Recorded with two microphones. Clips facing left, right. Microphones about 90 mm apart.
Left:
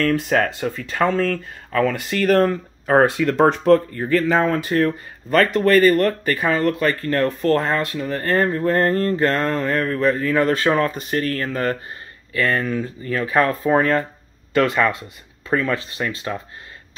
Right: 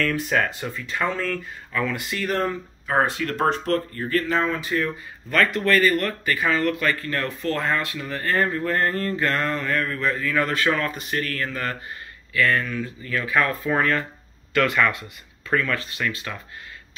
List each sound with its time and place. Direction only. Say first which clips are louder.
0.0 s speech: left 4 dB; 45° left (ahead or behind)
2.2 s speech: left 9 dB; 60° left (ahead or behind)
4.6 s speech: left 6 dB; 50° left (ahead or behind); by 16.3 s 30° left (ahead or behind)